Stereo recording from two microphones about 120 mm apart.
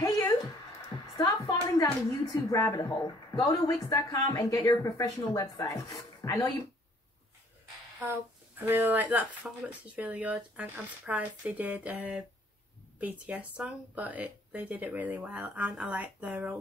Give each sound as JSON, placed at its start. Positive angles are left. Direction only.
{"t": 0.0, "sound": "music", "side_deg": 25}
{"t": 2.5, "sound": "speech", "side_deg": 30}
{"t": 8.1, "sound": "speech", "side_deg": -15}